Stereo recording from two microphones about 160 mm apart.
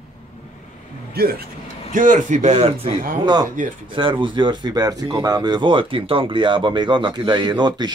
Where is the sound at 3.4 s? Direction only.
55° right (ahead or behind).